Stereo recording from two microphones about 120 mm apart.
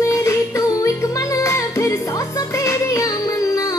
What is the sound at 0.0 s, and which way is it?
Music, 25° left (ahead or behind).